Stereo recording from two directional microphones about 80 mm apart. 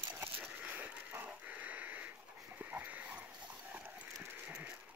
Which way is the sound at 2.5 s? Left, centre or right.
Right.